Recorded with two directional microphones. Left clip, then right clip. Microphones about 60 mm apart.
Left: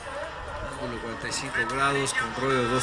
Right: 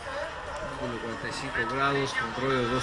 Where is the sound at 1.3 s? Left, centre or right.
Left.